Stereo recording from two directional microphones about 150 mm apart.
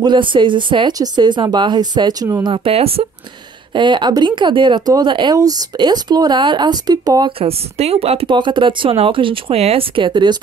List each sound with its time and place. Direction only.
0.0 s speech: 30° right (ahead or behind)
2.5 s speech: 40° right (ahead or behind)
7.3 s speech: 40° right (ahead or behind)